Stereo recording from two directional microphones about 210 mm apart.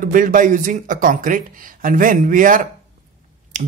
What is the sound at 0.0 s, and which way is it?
Speech, 40° right (ahead or behind).